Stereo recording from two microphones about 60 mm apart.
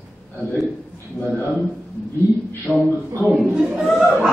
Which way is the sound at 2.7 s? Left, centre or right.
Centre.